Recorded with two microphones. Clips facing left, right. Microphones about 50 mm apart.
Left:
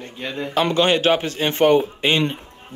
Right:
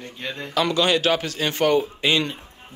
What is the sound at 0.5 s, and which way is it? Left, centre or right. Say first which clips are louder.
Speech: left 2 dB; left.